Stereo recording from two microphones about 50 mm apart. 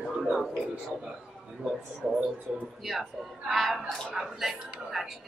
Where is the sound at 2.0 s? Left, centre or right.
Centre.